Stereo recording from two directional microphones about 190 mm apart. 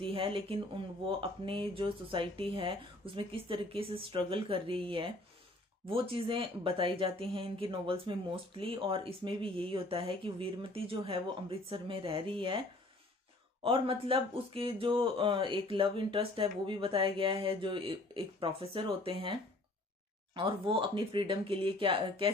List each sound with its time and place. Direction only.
0.0 s speech: 30° right (ahead or behind)
20.3 s speech: 25° right (ahead or behind)